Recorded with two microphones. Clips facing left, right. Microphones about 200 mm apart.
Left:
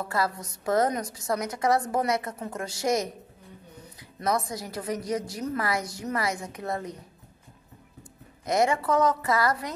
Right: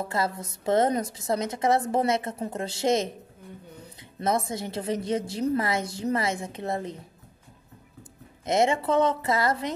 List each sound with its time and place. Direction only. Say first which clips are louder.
0.0 s a woman's voice: even; 25° right (ahead or behind)
8.5 s a woman's voice: right 1 dB; 25° right (ahead or behind)